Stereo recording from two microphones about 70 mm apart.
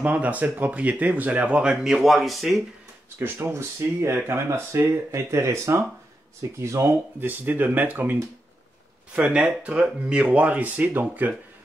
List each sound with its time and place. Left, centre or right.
0.0 s speech: right; by 2.6 s centre
3.2 s speech: right
7.2 s speech: right
9.1 s speech: centre